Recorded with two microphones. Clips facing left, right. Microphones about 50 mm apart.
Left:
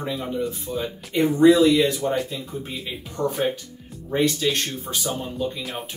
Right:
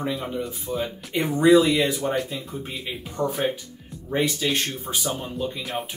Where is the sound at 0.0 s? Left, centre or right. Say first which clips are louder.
Left 1 dB; centre.